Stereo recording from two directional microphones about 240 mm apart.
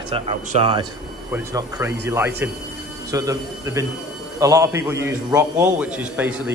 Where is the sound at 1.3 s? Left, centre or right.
Centre.